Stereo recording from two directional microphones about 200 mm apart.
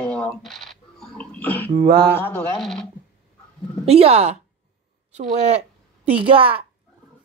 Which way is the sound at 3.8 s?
30° right (ahead or behind).